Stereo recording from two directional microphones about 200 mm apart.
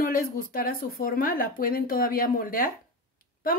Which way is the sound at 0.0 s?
45° left (ahead or behind).